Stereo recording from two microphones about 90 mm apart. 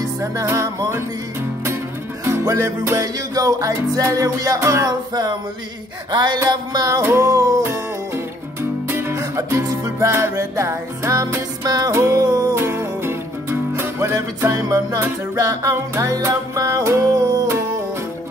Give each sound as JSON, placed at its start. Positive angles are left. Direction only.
{"t": 0.0, "sound": "music", "side_deg": -35}
{"t": 2.2, "sound": "music", "side_deg": -30}
{"t": 6.1, "sound": "music", "side_deg": -50}
{"t": 8.8, "sound": "music", "side_deg": -25}
{"t": 12.5, "sound": "music", "side_deg": -30}